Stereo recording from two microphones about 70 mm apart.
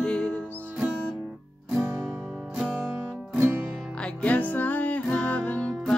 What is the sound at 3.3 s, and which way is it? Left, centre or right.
Music, right.